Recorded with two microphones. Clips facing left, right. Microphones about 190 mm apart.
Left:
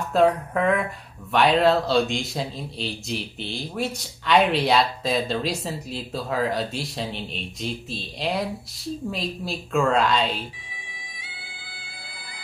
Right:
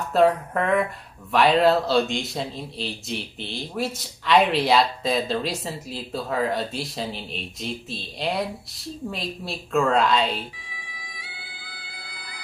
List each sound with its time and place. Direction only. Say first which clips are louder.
0.1 s a man's voice: even; centre (ahead or behind)
11.0 s bagpipes: right 1 dB; 25° left (ahead or behind)